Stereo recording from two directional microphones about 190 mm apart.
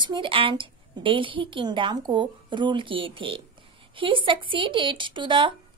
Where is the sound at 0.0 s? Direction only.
25° right (ahead or behind).